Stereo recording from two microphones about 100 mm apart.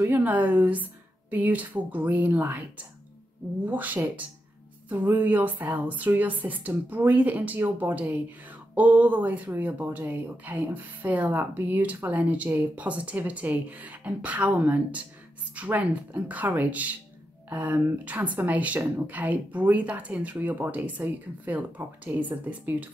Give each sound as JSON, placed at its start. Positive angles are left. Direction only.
{"t": 0.0, "sound": "speech", "side_deg": -20}
{"t": 3.6, "sound": "speech", "side_deg": -15}